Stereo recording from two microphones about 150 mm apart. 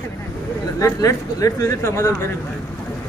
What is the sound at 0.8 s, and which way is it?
Speech, 20° left (ahead or behind).